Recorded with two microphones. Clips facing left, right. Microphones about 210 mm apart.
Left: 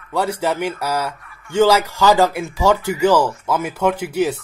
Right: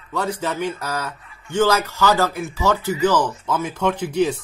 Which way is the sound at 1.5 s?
10° left (ahead or behind).